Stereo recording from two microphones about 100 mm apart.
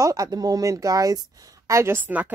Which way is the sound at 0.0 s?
35° right (ahead or behind).